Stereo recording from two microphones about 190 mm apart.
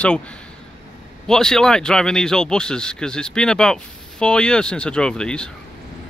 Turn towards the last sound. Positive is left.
turn(degrees=5)  # may be behind; listen again after turning